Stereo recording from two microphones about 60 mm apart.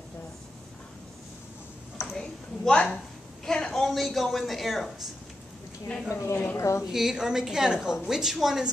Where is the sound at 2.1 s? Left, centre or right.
Centre.